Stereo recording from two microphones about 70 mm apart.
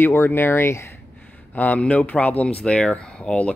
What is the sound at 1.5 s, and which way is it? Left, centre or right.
Speech, left.